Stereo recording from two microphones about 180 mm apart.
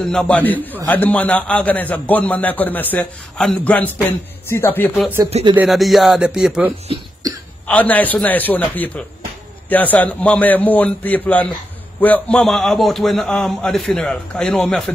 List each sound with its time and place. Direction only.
0.1 s a man's voice: 5° left (ahead or behind)
5.3 s music: 30° right (ahead or behind)
5.6 s a man's voice: centre (ahead or behind)
7.2 s throat clearing: 20° right (ahead or behind)
7.6 s a man's voice: 10° left (ahead or behind)